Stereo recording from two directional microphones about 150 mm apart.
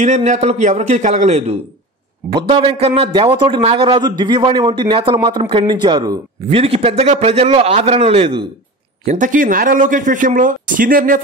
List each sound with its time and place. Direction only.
0.0 s a man's voice: 55° right (ahead or behind)
2.3 s speech: 35° right (ahead or behind)
6.6 s speech: 40° right (ahead or behind)
9.0 s speech: 55° right (ahead or behind); by 11.1 s 70° right (ahead or behind)